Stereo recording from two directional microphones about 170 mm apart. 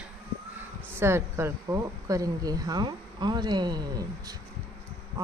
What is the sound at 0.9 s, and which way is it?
Speech, 15° right (ahead or behind).